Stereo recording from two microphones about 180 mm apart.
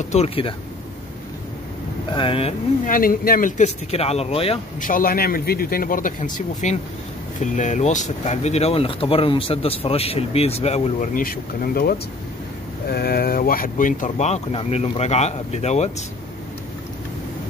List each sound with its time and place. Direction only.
0.1 s speech: 35° left (ahead or behind)
2.1 s speech: 30° left (ahead or behind)
2.8 s speech: 50° left (ahead or behind); by 4.6 s 30° left (ahead or behind)
4.7 s a man's voice: 50° left (ahead or behind)